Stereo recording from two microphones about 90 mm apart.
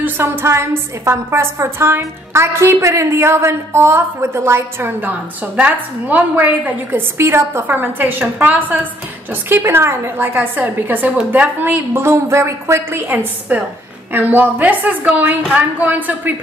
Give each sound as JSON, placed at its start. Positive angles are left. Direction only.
{"t": 0.0, "sound": "a woman's voice", "side_deg": -25}
{"t": 13.1, "sound": "a woman's voice", "side_deg": -20}